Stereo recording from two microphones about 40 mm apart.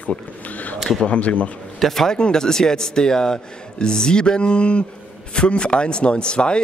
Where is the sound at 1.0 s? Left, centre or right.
Left.